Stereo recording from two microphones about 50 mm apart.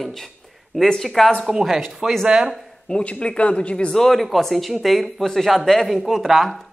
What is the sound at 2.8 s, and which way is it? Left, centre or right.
Speech, centre.